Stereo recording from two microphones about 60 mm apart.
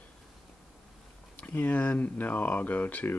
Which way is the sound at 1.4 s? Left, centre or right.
Left.